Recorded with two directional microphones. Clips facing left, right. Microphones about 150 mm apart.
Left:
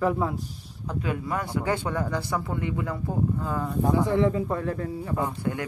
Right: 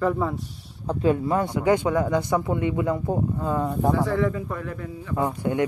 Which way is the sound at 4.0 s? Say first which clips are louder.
Left 1 dB; 25° left (ahead or behind).